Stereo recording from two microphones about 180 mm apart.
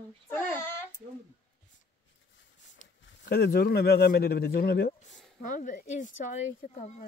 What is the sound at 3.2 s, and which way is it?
Speech, 60° left (ahead or behind).